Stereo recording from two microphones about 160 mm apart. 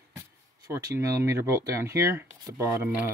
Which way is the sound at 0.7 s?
20° right (ahead or behind).